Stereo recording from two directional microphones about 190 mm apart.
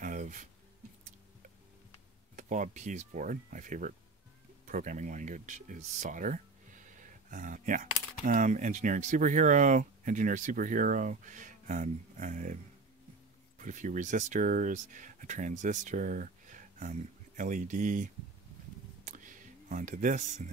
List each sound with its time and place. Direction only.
0.0 s a sound: 45° right (ahead or behind)
2.3 s speech: 40° right (ahead or behind)
13.6 s speech: 40° right (ahead or behind)
19.0 s computer keyboard: 45° right (ahead or behind)